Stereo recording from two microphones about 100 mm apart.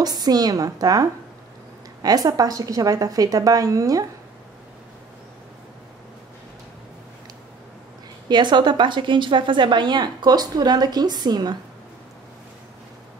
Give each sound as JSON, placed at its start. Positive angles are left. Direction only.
{"t": 0.0, "sound": "a woman's voice", "side_deg": -40}
{"t": 8.3, "sound": "a woman's voice", "side_deg": -50}